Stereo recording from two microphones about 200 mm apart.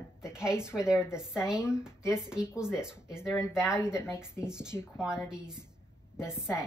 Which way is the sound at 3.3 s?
15° left (ahead or behind).